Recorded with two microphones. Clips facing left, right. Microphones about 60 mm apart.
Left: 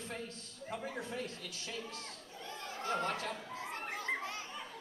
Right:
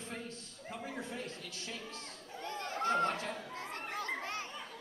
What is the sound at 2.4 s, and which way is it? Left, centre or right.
Chatter, right.